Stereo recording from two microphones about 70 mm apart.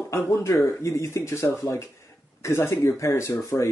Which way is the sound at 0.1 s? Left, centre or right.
Left.